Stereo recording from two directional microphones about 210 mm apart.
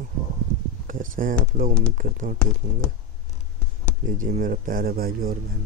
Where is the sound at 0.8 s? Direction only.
40° right (ahead or behind).